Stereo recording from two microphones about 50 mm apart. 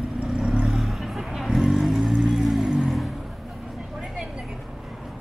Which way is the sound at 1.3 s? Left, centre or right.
Centre.